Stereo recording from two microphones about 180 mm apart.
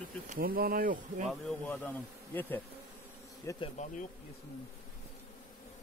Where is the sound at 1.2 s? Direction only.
5° left (ahead or behind).